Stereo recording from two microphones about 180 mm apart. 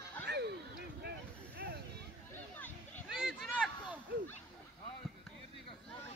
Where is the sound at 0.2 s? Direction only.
70° right (ahead or behind).